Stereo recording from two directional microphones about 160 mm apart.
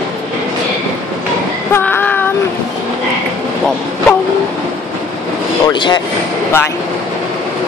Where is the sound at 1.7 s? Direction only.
15° left (ahead or behind).